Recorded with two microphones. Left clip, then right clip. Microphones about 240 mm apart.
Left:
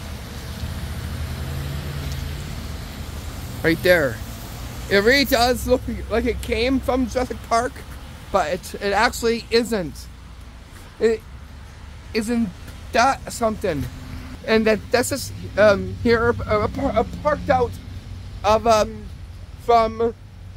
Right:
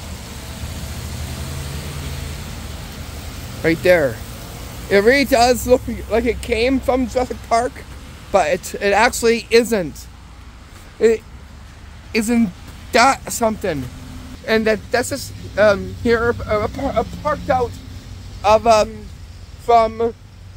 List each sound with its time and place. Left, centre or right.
3.6 s speech: centre
14.4 s a man's voice: centre